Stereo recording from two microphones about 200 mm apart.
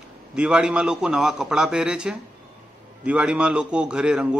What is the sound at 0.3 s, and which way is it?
A man's voice, 5° right (ahead or behind).